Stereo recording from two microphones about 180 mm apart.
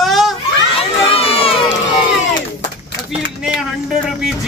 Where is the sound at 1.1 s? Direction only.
35° left (ahead or behind).